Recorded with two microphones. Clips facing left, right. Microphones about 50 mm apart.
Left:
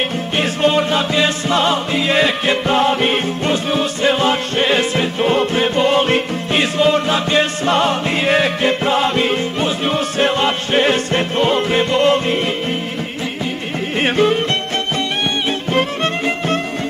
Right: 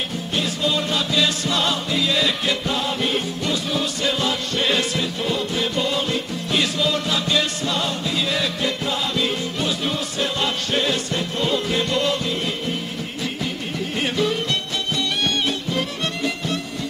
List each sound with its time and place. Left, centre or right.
0.4 s music: left
6.6 s music: left
13.9 s music: left
15.7 s music: left